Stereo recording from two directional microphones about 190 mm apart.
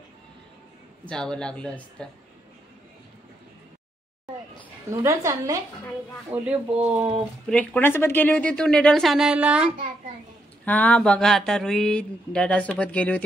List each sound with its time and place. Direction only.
1.0 s speech: 5° left (ahead or behind)
4.9 s speech: 15° right (ahead or behind)
7.2 s speech: 5° left (ahead or behind)
10.6 s speech: 10° left (ahead or behind)